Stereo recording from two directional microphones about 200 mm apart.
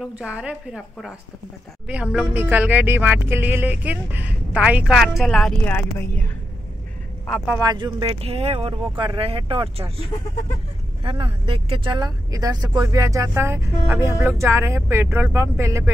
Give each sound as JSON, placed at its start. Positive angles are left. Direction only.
{"t": 0.0, "sound": "a woman's voice", "side_deg": -5}
{"t": 7.5, "sound": "speech", "side_deg": -20}
{"t": 11.1, "sound": "speech", "side_deg": -25}